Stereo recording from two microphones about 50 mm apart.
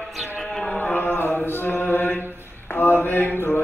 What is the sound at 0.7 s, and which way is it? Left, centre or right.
Mantra, left.